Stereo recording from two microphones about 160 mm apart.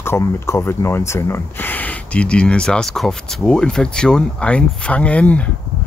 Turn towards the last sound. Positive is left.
turn(degrees=10)  # may be behind; listen again after turning